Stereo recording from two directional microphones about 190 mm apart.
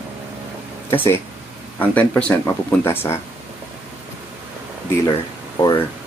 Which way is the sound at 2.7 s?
15° left (ahead or behind).